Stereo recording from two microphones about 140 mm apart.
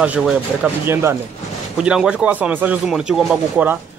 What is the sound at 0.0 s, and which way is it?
Speech, 10° right (ahead or behind).